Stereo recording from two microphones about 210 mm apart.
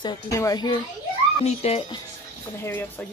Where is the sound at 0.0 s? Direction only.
15° left (ahead or behind).